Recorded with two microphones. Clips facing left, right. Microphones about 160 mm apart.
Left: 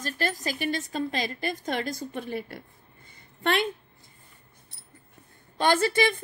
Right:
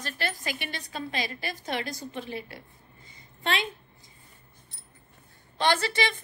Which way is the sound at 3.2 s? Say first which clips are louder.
Left 4 dB; 60° left (ahead or behind).